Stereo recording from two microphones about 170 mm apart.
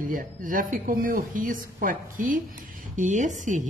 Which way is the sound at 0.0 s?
50° right (ahead or behind).